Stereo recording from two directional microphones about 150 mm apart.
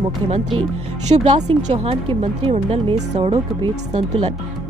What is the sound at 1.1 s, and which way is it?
Speech, 45° right (ahead or behind).